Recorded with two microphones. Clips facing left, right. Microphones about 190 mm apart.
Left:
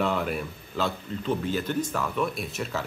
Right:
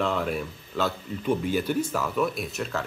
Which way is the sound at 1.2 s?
10° right (ahead or behind).